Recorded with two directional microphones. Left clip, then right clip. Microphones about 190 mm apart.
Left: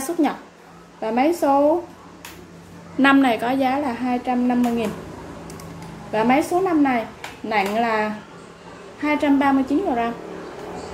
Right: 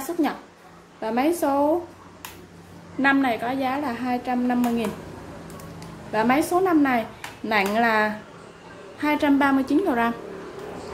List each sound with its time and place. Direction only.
1.0 s a woman's voice: centre (ahead or behind)
3.0 s a woman's voice: 10° left (ahead or behind)
6.1 s a woman's voice: centre (ahead or behind); by 10.1 s 20° right (ahead or behind)